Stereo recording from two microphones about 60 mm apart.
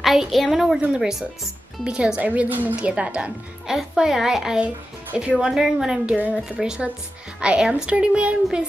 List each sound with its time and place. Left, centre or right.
0.0 s a woman's voice: centre
1.9 s a woman's voice: centre
6.1 s a woman's voice: right
6.6 s a woman's voice: centre